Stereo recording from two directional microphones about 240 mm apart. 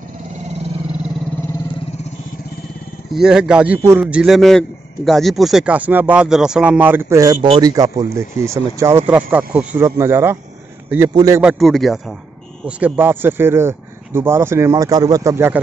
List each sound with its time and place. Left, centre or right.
3.1 s a man's voice: centre
11.5 s a man's voice: centre